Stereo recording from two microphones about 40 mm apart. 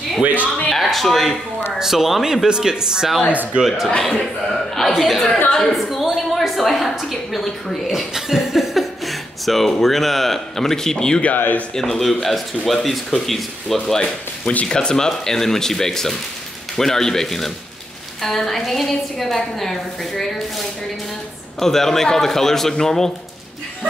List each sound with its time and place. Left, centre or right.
0.7 s a sound: centre
1.8 s speech: centre
2.4 s speech: centre
3.6 s speech: centre
5.5 s a woman's voice: centre
5.8 s a woman's voice: centre
7.8 s speech: centre
11.3 s speech: left
11.7 s speech: centre
13.8 s a woman's voice: centre